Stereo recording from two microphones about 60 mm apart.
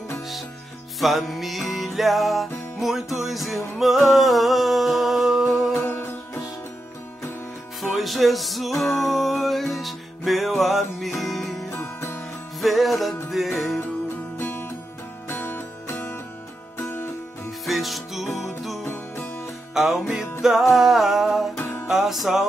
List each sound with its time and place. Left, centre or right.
0.9 s music: centre
5.7 s music: left
7.8 s music: centre
11.8 s music: left
12.5 s music: centre
15.2 s music: left
17.6 s music: centre
19.7 s music: centre